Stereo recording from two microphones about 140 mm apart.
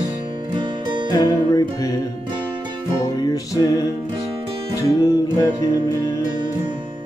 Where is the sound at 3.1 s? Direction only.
25° left (ahead or behind).